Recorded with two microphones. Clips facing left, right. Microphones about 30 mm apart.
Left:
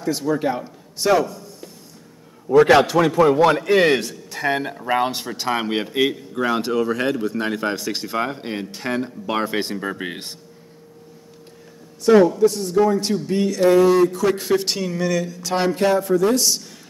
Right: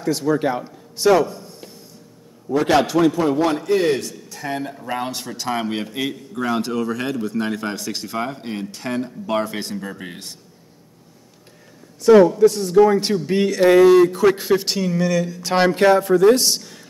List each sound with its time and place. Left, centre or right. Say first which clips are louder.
0.0 s speech: right 2 dB; centre
2.5 s a man's voice: left 4 dB; left
12.4 s a man's voice: right 3 dB; right
12.8 s speech: right 3 dB; right
14.0 s speech: right 3 dB; right
14.3 s speech: right 1 dB; centre
15.5 s speech: right 4 dB; right